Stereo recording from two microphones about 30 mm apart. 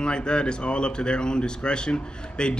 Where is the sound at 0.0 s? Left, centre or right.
Left.